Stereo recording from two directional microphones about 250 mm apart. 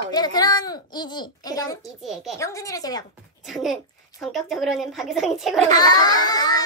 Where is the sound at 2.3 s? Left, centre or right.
Centre.